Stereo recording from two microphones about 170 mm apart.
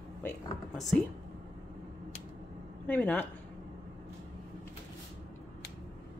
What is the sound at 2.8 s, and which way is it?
Speech, 10° left (ahead or behind).